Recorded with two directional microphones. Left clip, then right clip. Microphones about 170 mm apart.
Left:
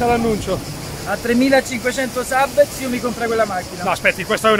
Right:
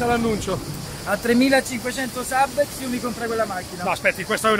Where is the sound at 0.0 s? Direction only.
10° right (ahead or behind).